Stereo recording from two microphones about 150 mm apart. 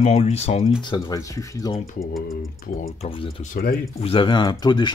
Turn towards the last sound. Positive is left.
turn(degrees=30)  # may be behind; listen again after turning